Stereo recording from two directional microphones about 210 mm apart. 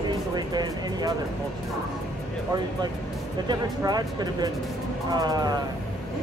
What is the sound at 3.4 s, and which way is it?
Speech, 20° right (ahead or behind).